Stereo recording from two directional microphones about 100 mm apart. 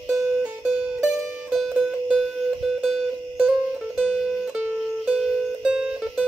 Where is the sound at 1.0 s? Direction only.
Centre (ahead or behind).